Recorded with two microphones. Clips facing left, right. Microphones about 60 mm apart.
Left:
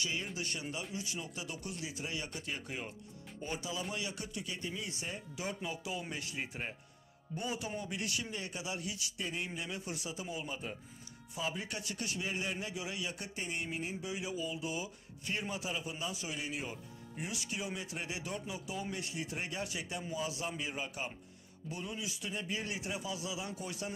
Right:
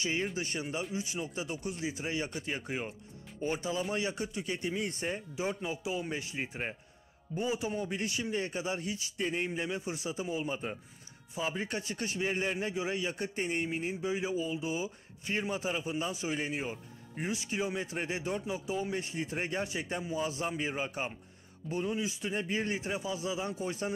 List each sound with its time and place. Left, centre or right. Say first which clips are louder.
0.0 s a man's voice: right 5 dB; right
4.6 s speech: right 9 dB; right
5.0 s a man's voice: right 6 dB; right